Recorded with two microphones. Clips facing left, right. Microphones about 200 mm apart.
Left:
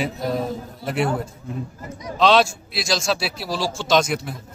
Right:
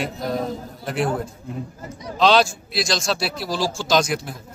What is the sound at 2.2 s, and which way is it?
A man's voice, centre (ahead or behind).